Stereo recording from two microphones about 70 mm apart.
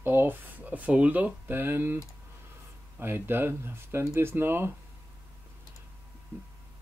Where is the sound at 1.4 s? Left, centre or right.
Right.